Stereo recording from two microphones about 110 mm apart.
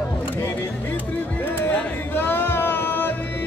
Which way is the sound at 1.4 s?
15° left (ahead or behind).